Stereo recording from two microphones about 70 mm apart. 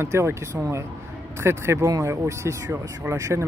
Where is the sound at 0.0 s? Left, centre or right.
Right.